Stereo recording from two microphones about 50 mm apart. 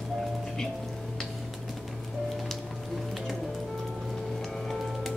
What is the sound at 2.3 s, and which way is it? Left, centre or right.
Music, centre.